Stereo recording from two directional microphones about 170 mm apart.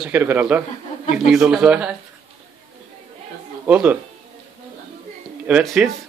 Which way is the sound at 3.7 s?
10° right (ahead or behind).